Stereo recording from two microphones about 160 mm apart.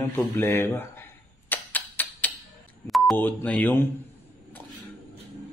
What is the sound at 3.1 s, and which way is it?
Speech, 10° left (ahead or behind).